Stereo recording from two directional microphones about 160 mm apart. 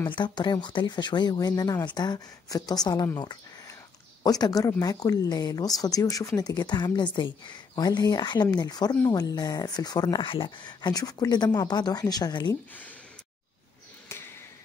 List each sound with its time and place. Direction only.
0.1 s speech: 30° left (ahead or behind)
3.2 s a sound: 25° left (ahead or behind)
4.2 s speech: 25° left (ahead or behind)